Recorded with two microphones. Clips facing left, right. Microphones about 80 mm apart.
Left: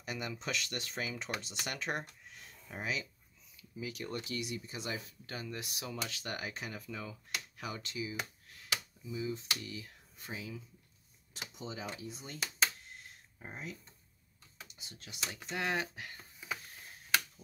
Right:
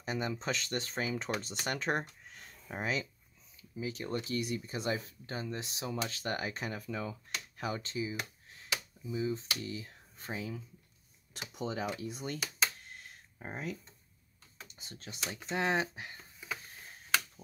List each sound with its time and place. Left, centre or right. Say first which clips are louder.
0.0 s speech: right 5 dB; right
5.9 s speech: right 5 dB; right
14.8 s speech: right 8 dB; right
15.4 s speech: right 4 dB; right